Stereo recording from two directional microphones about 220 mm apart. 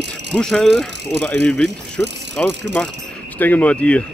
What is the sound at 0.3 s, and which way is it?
Speech, centre (ahead or behind).